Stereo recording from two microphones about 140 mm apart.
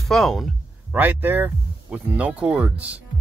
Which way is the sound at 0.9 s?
15° right (ahead or behind).